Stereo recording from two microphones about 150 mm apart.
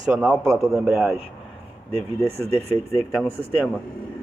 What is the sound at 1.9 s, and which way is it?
Speech, 40° right (ahead or behind).